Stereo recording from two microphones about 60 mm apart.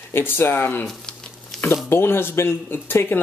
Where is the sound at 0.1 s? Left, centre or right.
Left.